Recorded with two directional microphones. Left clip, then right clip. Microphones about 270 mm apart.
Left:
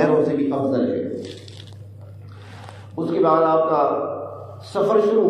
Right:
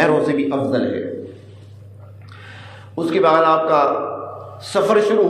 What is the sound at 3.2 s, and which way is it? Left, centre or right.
Speech, right.